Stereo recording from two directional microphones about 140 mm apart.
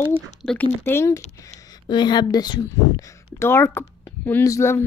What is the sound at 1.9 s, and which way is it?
Speech, 30° left (ahead or behind).